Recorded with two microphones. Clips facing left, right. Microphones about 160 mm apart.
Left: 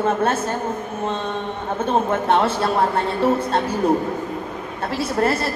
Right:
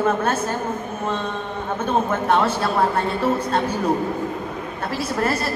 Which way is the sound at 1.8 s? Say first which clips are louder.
Left 2 dB; 30° left (ahead or behind).